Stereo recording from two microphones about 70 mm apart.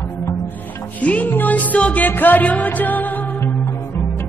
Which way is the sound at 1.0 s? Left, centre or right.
Left.